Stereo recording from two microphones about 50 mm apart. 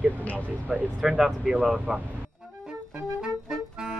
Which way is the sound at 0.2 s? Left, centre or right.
Left.